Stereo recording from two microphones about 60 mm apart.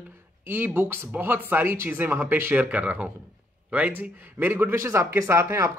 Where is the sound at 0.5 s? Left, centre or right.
Right.